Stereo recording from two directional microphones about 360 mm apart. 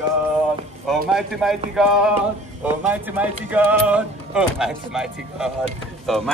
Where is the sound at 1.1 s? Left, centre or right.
Centre.